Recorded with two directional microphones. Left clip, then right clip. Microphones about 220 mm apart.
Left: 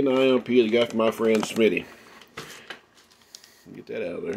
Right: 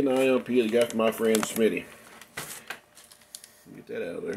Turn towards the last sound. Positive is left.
turn(degrees=25)  # may be behind; listen again after turning